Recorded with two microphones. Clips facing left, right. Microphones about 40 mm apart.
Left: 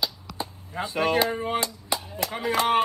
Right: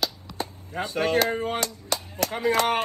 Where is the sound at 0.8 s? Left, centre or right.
Left.